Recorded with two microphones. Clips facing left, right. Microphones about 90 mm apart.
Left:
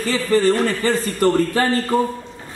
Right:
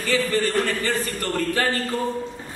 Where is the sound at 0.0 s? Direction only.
35° left (ahead or behind).